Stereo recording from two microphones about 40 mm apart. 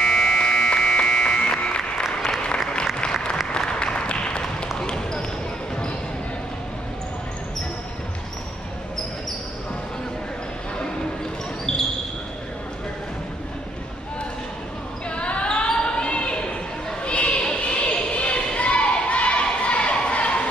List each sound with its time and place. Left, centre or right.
0.0 s buzzer: centre
0.4 s music: centre
2.1 s applause: centre
3.5 s applause: left
4.7 s basketball bounce: centre
15.0 s basketball bounce: left
17.0 s a sound: left